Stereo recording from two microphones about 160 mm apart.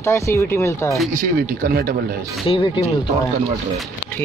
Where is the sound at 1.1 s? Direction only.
65° right (ahead or behind).